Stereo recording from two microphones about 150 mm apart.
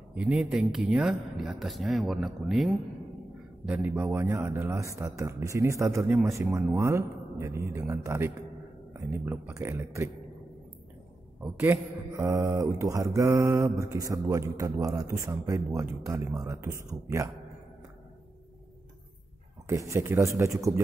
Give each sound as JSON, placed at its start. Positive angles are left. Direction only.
{"t": 0.1, "sound": "speech", "side_deg": -10}
{"t": 11.4, "sound": "speech", "side_deg": -10}
{"t": 19.7, "sound": "speech", "side_deg": -20}